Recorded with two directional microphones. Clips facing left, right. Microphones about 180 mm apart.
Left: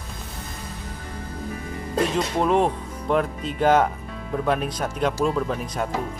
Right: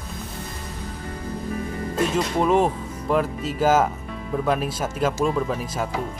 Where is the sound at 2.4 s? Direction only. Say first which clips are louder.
Right 1 dB; centre (ahead or behind).